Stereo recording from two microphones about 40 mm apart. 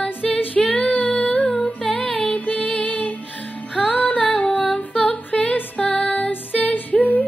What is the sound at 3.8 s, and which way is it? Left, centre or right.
Female singing, left.